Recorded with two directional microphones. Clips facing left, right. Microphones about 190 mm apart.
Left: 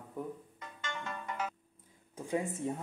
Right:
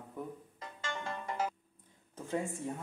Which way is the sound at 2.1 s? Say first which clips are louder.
Left 2 dB; 15° left (ahead or behind).